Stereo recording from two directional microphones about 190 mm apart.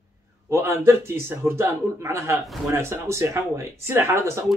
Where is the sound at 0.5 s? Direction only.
15° right (ahead or behind).